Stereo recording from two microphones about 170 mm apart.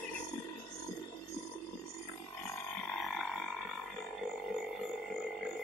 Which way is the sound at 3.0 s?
Centre (ahead or behind).